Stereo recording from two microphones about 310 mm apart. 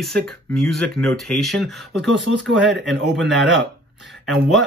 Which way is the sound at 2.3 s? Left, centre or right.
Right.